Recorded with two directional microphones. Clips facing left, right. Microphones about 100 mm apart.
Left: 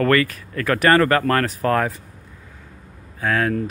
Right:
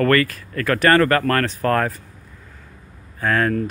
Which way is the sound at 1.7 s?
5° left (ahead or behind).